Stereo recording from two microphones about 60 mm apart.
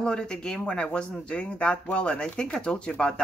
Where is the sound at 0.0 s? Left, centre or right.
Centre.